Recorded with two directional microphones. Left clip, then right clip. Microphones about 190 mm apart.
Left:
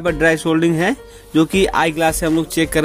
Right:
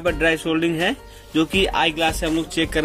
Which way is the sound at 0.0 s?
50° left (ahead or behind).